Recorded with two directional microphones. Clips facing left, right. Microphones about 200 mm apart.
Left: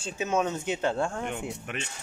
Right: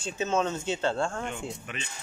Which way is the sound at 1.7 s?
60° left (ahead or behind).